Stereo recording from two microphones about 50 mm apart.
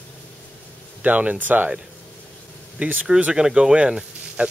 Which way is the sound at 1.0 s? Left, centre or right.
Right.